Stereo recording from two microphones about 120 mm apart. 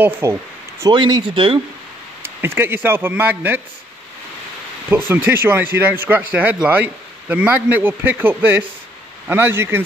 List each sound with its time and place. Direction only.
0.0 s speech: 20° right (ahead or behind)
0.9 s speech: 40° right (ahead or behind)
2.2 s speech: 20° right (ahead or behind)
4.8 s speech: 15° right (ahead or behind)